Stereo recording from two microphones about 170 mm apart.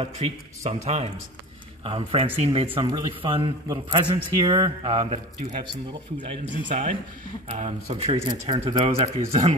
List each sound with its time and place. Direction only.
0.0 s speech: 40° right (ahead or behind)
3.6 s a man's voice: 20° right (ahead or behind)
6.7 s speech: 50° right (ahead or behind); by 9.4 s 35° right (ahead or behind)